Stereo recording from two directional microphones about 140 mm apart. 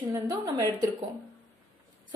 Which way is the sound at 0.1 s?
25° right (ahead or behind).